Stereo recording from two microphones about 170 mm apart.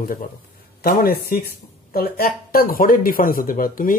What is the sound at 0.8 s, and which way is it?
A man's voice, 65° left (ahead or behind).